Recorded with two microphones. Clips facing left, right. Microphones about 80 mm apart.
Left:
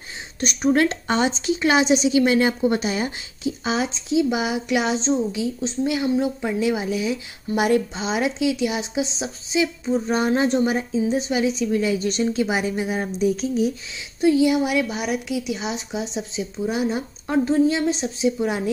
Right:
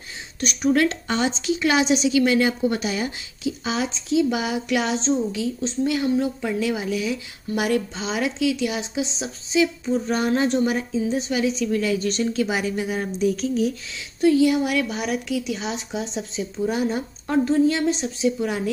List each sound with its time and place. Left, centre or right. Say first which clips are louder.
0.4 s a woman's voice: left 1 dB; left
4.1 s a woman's voice: even; centre
5.3 s a woman's voice: even; centre